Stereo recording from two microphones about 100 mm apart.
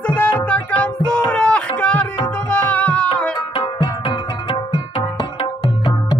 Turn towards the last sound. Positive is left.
turn(degrees=55)  # may be behind; listen again after turning